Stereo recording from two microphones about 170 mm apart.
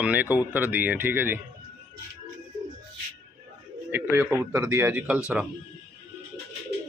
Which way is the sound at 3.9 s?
10° right (ahead or behind).